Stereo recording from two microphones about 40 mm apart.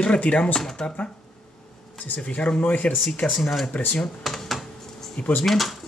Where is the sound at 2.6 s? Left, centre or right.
Left.